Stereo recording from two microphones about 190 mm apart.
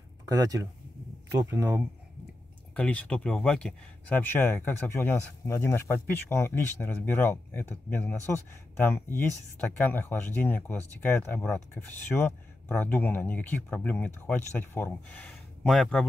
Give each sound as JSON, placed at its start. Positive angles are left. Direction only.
{"t": 0.3, "sound": "speech", "side_deg": -20}
{"t": 2.7, "sound": "speech", "side_deg": 5}